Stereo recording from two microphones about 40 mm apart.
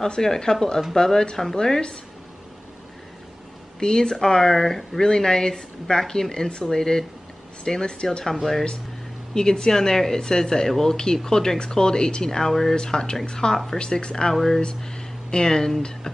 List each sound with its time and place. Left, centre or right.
0.1 s speech: centre
3.8 s speech: centre
5.0 s speech: centre
8.3 s speech: centre
12.7 s speech: centre
14.3 s speech: centre
14.8 s speech: centre